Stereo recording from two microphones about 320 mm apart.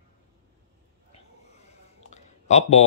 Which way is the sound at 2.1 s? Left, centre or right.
Left.